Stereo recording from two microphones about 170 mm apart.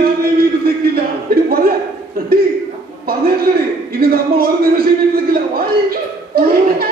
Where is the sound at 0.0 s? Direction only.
65° right (ahead or behind).